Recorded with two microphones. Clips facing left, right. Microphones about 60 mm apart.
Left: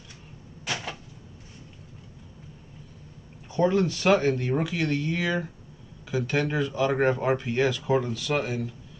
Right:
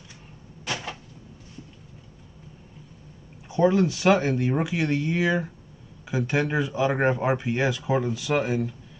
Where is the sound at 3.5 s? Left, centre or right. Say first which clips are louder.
Right 2 dB; centre.